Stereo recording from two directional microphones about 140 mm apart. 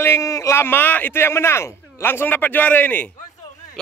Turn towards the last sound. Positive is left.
turn(degrees=10)  # may be behind; listen again after turning